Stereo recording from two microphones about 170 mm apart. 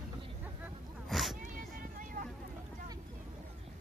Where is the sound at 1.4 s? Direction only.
55° right (ahead or behind).